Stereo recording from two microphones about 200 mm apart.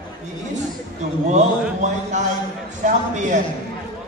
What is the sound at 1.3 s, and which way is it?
A man's voice, 35° right (ahead or behind).